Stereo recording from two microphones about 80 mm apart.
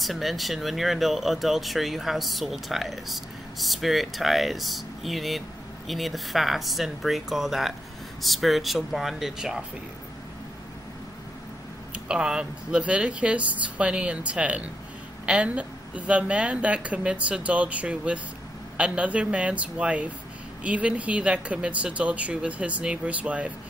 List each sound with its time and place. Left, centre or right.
0.0 s speech: centre
11.9 s a woman's voice: centre